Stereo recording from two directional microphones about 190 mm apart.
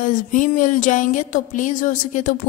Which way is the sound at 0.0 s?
40° left (ahead or behind).